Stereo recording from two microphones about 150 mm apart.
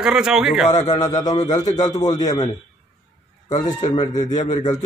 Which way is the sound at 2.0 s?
50° left (ahead or behind).